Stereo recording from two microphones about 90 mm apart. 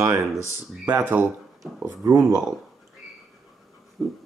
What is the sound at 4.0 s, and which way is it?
Speech, 30° right (ahead or behind).